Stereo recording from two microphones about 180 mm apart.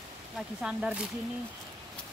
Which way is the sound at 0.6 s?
5° right (ahead or behind).